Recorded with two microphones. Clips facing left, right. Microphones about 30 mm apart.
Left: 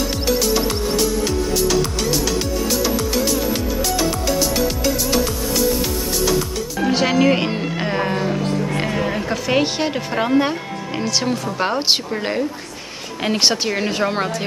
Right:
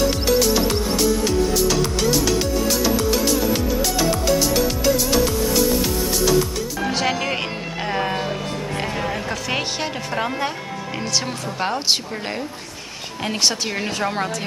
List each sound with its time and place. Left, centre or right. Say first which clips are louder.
0.0 s music: right 2 dB; centre
6.8 s music: left 6 dB; centre
8.6 s music: left 3 dB; centre
11.0 s speech: left 4 dB; centre
13.7 s speech: left 4 dB; centre